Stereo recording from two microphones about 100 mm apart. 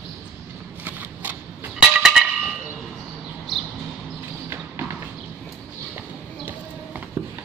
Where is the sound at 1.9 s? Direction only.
5° right (ahead or behind).